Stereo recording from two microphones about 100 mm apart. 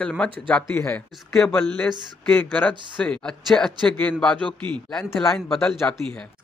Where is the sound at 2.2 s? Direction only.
15° left (ahead or behind).